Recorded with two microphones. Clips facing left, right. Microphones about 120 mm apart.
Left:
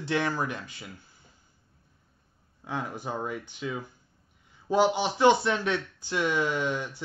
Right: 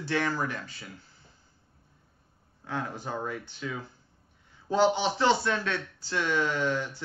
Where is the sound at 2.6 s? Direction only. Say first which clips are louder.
Left 1 dB; 15° left (ahead or behind).